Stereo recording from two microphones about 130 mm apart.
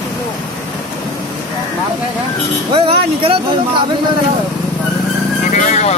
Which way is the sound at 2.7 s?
45° right (ahead or behind).